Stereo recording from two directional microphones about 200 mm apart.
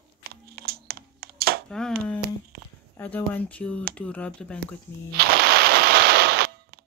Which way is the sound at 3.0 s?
10° left (ahead or behind).